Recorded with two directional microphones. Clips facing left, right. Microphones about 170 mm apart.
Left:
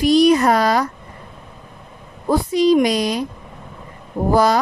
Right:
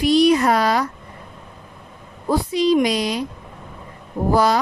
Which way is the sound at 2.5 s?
45° left (ahead or behind).